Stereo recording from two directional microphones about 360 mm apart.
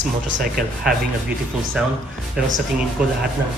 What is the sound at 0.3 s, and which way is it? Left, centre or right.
Speech, right.